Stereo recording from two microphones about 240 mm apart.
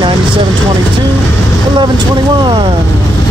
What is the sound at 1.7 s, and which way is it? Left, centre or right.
Speech, centre.